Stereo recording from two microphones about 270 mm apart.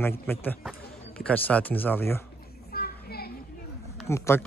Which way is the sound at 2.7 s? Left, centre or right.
Left.